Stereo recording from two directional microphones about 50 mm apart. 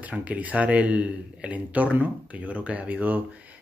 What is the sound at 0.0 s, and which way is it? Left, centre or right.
Speech, right.